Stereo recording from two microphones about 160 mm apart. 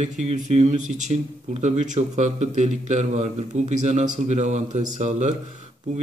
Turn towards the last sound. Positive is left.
turn(degrees=-45)  # may be behind; listen again after turning